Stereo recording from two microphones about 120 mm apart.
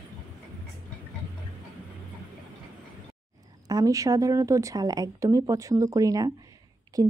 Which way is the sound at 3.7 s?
30° right (ahead or behind).